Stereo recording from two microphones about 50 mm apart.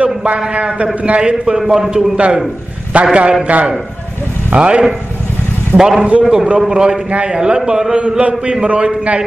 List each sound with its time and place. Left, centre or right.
0.0 s a man's voice: right
1.8 s a man's voice: centre
2.1 s a man's voice: right
5.8 s a man's voice: centre